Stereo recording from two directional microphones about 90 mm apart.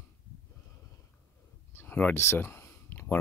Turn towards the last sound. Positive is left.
turn(degrees=25)  # may be behind; listen again after turning